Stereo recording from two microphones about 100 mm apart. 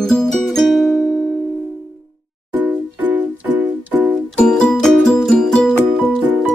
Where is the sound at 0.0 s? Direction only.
Centre (ahead or behind).